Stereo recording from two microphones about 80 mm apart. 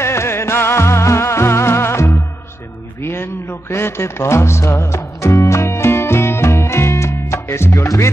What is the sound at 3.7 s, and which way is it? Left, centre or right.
Music, left.